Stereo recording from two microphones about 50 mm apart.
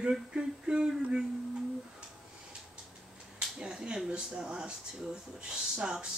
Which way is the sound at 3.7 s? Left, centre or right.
Centre.